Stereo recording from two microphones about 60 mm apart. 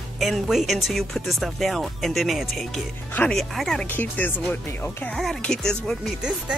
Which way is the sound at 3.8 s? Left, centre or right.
Left.